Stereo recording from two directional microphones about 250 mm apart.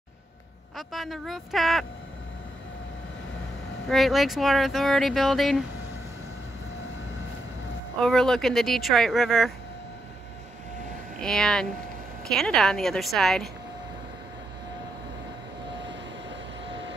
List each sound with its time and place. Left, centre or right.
0.7 s speech: centre
3.9 s speech: centre
8.0 s speech: centre
11.1 s speech: centre
16.6 s vehicle: right